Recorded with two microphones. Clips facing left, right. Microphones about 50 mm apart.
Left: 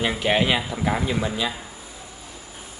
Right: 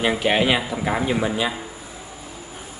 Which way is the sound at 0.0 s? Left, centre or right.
Centre.